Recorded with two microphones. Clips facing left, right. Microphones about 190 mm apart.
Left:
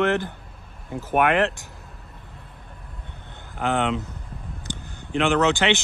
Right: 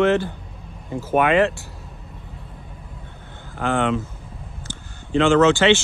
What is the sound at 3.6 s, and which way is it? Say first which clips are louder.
Speech: right 2 dB; 20° left (ahead or behind).